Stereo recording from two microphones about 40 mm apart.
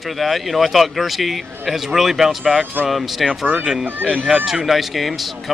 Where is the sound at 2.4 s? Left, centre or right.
Centre.